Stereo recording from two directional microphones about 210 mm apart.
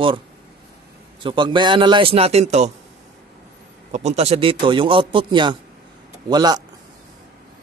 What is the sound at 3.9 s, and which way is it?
Speech, 30° right (ahead or behind).